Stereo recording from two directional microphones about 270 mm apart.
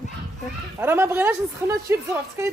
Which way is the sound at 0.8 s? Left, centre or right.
Centre.